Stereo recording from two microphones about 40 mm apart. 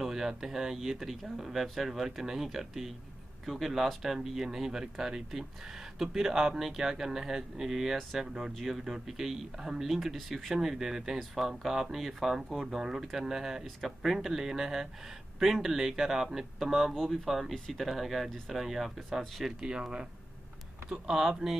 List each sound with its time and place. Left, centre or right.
0.0 s a sound: centre
0.3 s speech: centre
9.9 s speech: centre
12.7 s speech: centre
16.9 s speech: centre
19.6 s speech: centre
21.1 s speech: centre